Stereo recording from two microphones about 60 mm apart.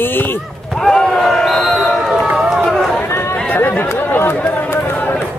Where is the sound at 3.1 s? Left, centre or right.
Left.